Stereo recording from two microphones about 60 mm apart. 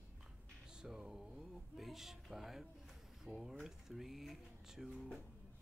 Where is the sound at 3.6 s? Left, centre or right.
Centre.